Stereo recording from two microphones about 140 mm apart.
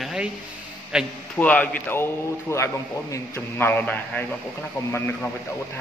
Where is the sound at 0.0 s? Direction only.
5° right (ahead or behind).